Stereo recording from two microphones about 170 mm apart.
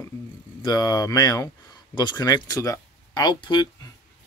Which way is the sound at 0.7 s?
25° left (ahead or behind).